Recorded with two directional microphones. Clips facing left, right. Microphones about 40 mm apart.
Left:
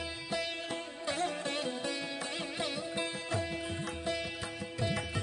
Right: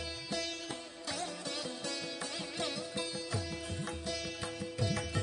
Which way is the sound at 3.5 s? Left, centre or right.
Left.